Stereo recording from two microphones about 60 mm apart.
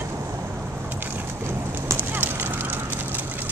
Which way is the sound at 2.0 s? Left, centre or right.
Right.